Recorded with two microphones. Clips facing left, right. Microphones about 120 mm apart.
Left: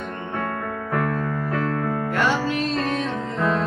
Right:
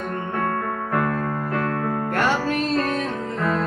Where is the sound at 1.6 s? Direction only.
50° right (ahead or behind).